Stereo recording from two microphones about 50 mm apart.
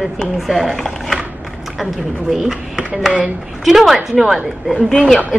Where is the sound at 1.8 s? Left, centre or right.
Centre.